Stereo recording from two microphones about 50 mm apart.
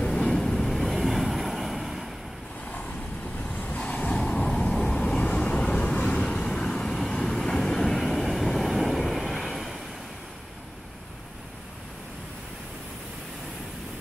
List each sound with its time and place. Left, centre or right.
0.0 s vehicle: centre
3.5 s vehicle: left; by 9.8 s centre